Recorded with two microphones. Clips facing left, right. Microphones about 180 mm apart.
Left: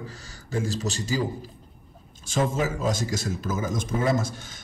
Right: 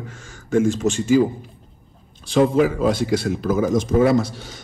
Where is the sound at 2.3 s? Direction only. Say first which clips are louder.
Right 9 dB; 45° left (ahead or behind).